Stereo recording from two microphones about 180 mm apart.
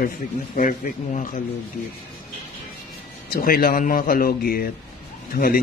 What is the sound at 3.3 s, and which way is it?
A man's voice, 55° left (ahead or behind).